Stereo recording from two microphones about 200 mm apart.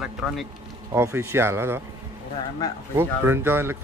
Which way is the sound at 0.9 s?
15° right (ahead or behind).